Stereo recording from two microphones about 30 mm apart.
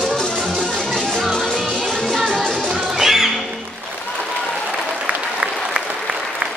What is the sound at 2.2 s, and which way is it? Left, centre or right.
Music, left.